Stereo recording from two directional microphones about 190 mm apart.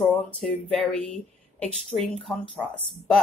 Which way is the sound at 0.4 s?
5° left (ahead or behind).